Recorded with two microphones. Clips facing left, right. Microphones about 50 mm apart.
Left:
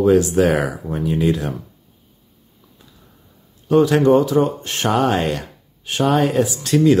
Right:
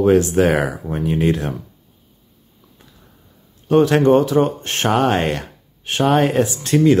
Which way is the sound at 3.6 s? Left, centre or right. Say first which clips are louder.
Even; right.